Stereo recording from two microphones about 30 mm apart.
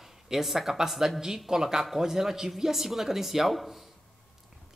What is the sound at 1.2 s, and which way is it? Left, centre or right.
A man's voice, centre.